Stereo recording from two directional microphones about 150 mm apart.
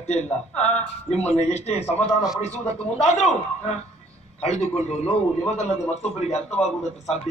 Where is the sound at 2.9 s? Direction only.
50° left (ahead or behind).